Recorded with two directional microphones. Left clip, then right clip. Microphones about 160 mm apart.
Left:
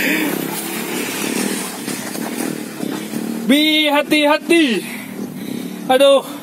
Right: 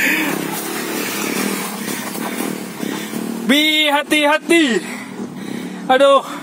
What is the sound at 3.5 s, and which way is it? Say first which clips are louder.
Speech: even; 5° left (ahead or behind).